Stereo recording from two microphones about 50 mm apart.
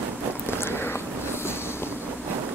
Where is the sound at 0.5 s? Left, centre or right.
Left.